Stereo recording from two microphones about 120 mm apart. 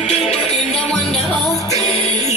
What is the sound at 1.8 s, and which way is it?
Music, 55° left (ahead or behind).